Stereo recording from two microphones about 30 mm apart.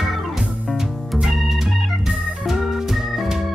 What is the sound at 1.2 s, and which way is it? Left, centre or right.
Organ, centre.